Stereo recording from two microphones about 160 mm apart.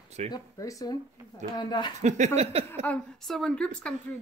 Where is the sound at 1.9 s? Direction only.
45° right (ahead or behind).